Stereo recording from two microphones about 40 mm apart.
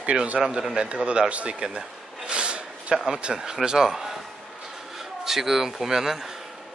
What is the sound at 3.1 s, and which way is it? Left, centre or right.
Speech, right.